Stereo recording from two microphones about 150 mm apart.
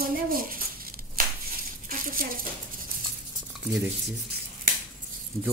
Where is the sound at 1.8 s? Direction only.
75° right (ahead or behind).